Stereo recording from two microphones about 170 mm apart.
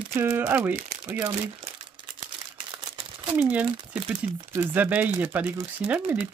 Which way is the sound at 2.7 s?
30° right (ahead or behind).